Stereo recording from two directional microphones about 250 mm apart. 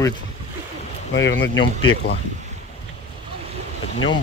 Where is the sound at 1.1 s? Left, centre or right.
Left.